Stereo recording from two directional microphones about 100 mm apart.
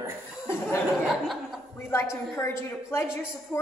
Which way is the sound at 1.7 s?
25° left (ahead or behind).